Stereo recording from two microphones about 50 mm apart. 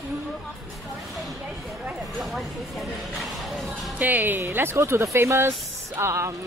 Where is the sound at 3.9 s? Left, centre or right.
Right.